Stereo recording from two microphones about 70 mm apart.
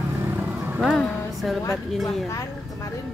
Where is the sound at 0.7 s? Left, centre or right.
Centre.